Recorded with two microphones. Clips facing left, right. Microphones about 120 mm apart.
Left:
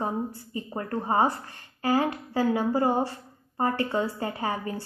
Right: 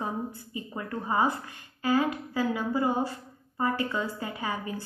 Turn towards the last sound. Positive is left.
turn(degrees=40)  # may be behind; listen again after turning